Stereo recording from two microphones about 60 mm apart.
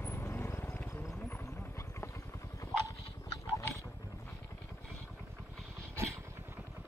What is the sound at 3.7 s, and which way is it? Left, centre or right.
Dog, left.